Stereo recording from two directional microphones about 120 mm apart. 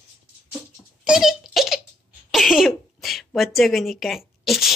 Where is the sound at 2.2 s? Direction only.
Centre (ahead or behind).